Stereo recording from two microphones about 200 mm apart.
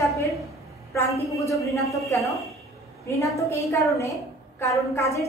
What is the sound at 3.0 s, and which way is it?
A woman's voice, 15° left (ahead or behind).